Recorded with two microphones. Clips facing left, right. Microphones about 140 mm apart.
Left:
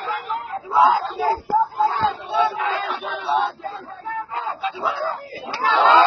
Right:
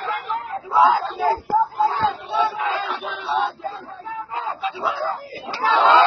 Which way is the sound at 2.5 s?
Centre (ahead or behind).